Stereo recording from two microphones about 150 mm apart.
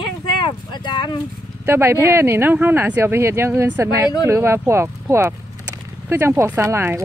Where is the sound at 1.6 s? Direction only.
15° right (ahead or behind).